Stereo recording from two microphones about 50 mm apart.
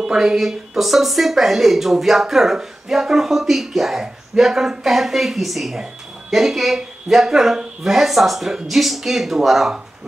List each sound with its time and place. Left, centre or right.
0.0 s speech: centre